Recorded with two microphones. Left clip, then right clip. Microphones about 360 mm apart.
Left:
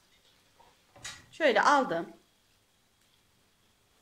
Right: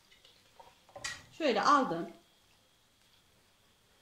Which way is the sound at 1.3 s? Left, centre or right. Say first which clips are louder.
Left 5 dB; left.